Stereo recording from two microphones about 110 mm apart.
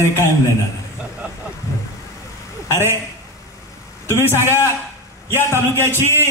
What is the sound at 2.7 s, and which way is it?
Speech, 25° right (ahead or behind).